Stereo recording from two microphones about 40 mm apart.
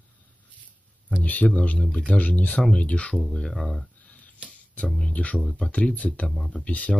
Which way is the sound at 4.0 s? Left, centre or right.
Left.